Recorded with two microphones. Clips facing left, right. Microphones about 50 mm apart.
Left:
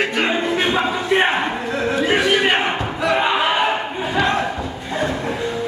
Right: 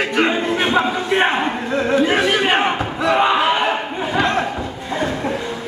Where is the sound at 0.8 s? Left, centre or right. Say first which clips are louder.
Even; centre.